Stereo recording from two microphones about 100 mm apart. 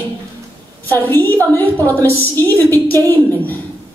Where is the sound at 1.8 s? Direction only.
20° left (ahead or behind).